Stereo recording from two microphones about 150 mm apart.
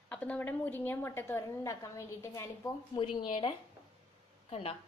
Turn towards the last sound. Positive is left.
turn(degrees=40)  # may be behind; listen again after turning